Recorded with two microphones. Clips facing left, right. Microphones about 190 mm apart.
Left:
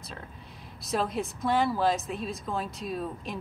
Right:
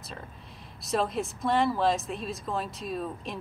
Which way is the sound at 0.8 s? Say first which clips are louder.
Right 1 dB; centre (ahead or behind).